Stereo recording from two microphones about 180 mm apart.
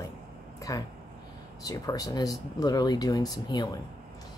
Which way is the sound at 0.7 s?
20° left (ahead or behind).